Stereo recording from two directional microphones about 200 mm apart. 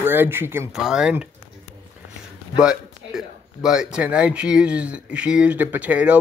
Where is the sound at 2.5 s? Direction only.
5° right (ahead or behind).